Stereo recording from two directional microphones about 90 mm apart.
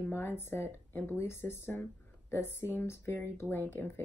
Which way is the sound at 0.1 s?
25° left (ahead or behind).